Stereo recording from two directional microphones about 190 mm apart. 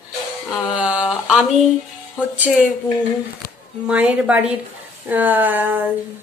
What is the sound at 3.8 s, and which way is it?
A woman's voice, 5° right (ahead or behind).